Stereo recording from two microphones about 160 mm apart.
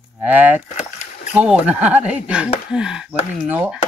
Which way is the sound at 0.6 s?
45° left (ahead or behind).